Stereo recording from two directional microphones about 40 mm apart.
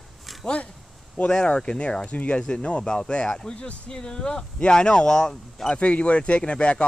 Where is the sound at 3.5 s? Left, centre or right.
Left.